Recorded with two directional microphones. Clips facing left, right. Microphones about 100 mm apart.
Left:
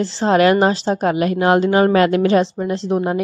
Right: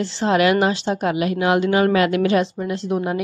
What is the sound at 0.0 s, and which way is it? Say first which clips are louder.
A woman's voice: left 3 dB; 35° left (ahead or behind).